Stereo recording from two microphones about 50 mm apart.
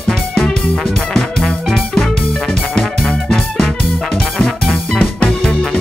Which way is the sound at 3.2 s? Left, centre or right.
Centre.